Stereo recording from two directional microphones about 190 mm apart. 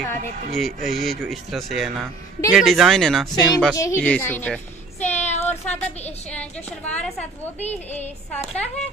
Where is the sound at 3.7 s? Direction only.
15° left (ahead or behind).